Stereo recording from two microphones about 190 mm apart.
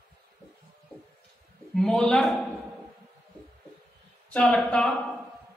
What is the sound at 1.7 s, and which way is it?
Speech, 5° left (ahead or behind).